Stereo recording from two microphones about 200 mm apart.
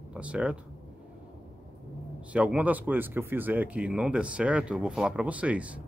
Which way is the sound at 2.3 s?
5° right (ahead or behind).